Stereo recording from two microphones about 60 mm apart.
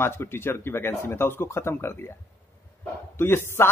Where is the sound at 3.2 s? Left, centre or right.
Left.